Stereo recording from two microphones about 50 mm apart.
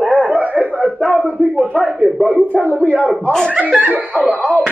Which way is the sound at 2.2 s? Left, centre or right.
Right.